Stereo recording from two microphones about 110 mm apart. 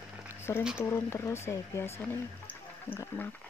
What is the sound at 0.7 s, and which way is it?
Speech, 20° left (ahead or behind).